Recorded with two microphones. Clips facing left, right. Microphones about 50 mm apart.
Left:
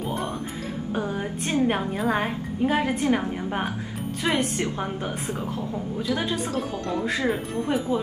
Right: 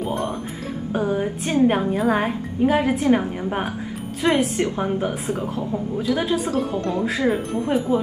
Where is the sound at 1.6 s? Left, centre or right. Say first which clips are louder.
Right 6 dB; centre.